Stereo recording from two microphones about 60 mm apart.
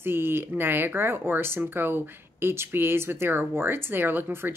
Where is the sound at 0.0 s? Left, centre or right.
Right.